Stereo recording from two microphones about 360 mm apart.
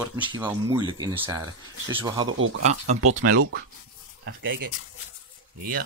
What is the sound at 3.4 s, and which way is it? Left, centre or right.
Speech, right.